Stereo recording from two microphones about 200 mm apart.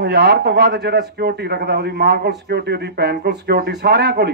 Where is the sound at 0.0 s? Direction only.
55° right (ahead or behind).